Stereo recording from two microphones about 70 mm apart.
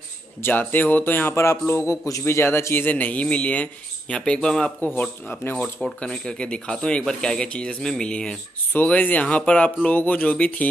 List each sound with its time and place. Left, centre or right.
0.4 s a man's voice: left; by 4.7 s centre
4.8 s speech: left
5.4 s a man's voice: left
5.9 s speech: centre
8.7 s speech: left